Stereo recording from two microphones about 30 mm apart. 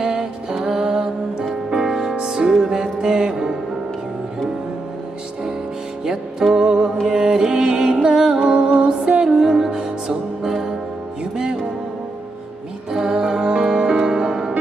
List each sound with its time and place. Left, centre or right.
0.0 s music: right
6.5 s music: centre
9.4 s music: centre
10.5 s brass instrument: centre
12.9 s music: right